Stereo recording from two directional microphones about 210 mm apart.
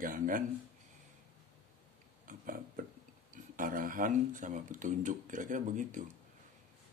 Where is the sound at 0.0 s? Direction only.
40° right (ahead or behind).